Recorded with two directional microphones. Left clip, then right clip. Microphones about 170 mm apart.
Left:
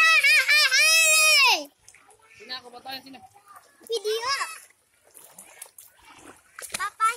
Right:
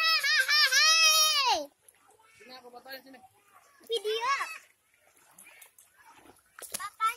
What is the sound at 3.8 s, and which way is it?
Speech, 25° right (ahead or behind).